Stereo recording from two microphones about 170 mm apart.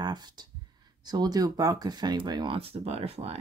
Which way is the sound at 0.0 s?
25° right (ahead or behind).